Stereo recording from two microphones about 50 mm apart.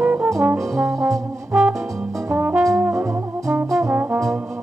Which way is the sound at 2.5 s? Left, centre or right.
Right.